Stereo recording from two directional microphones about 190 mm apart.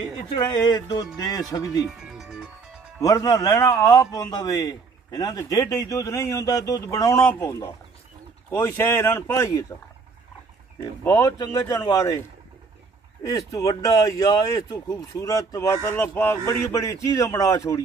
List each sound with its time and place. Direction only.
0.3 s speech: 25° left (ahead or behind)
1.9 s music: centre (ahead or behind)
3.0 s a man's voice: 20° left (ahead or behind)
10.8 s speech: 15° left (ahead or behind)
13.2 s a man's voice: 20° left (ahead or behind)